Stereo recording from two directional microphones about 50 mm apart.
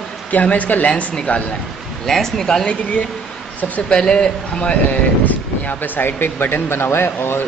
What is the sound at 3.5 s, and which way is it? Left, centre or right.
Speech, left.